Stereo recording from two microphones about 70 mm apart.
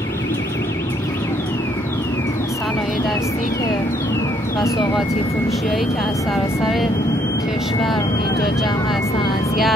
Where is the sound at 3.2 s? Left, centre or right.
Left.